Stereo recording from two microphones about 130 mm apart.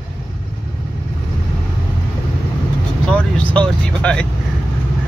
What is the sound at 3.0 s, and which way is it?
Vehicle, 10° left (ahead or behind).